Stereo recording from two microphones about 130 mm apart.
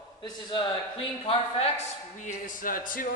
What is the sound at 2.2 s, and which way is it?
Speech, 90° left.